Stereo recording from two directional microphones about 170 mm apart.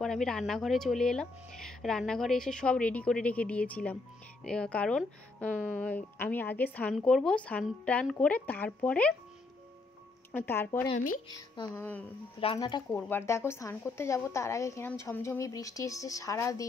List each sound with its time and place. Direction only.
0.0 s speech: 5° left (ahead or behind)
10.3 s speech: 15° left (ahead or behind)
11.2 s speech: 25° left (ahead or behind)
11.7 s speech: 10° left (ahead or behind)
12.5 s speech: 25° left (ahead or behind)
12.9 s speech: 15° left (ahead or behind)